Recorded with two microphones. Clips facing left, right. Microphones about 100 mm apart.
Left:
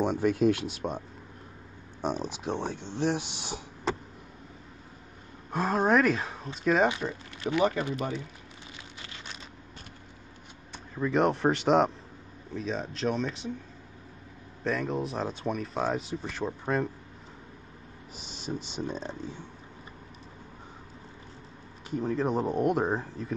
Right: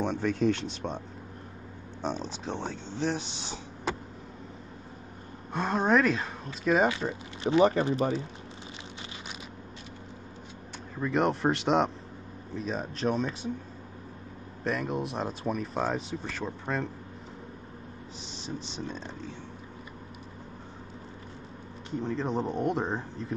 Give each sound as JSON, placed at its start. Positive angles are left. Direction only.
{"t": 0.0, "sound": "speech", "side_deg": 10}
{"t": 5.5, "sound": "speech", "side_deg": 5}
{"t": 7.4, "sound": "speech", "side_deg": -30}
{"t": 11.0, "sound": "speech", "side_deg": 0}
{"t": 14.6, "sound": "speech", "side_deg": 0}
{"t": 18.2, "sound": "speech", "side_deg": 15}
{"t": 22.0, "sound": "speech", "side_deg": 10}